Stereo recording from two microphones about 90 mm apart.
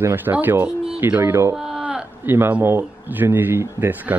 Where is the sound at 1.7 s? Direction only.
10° right (ahead or behind).